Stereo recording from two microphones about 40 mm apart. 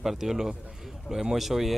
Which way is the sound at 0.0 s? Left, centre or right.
Centre.